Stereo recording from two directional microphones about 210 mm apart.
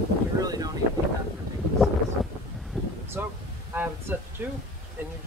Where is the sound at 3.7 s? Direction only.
10° right (ahead or behind).